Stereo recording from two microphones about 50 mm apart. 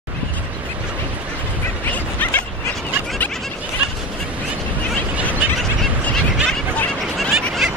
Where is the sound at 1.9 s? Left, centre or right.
Left.